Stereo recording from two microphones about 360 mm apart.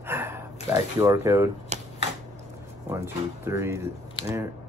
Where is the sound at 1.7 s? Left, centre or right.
Centre.